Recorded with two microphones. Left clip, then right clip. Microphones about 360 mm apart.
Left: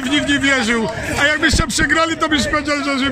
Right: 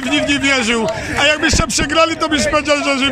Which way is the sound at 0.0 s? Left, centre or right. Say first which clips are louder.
Right 1 dB; centre.